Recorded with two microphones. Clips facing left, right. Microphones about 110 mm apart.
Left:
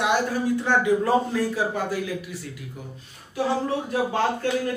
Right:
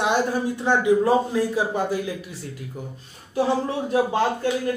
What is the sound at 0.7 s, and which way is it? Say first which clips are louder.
A man's voice: right 4 dB; 20° right (ahead or behind).